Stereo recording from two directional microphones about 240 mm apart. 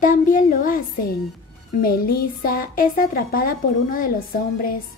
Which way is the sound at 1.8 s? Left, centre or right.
Left.